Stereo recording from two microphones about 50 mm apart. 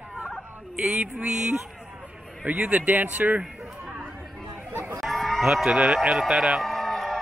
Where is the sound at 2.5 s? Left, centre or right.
Right.